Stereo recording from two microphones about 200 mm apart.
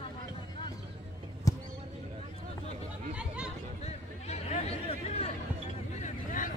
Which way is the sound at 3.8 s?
35° left (ahead or behind).